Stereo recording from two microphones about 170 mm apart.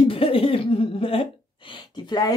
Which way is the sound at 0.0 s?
30° left (ahead or behind).